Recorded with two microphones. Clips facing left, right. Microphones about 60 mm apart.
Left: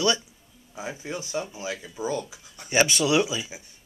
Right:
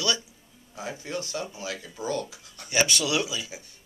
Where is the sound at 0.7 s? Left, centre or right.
Centre.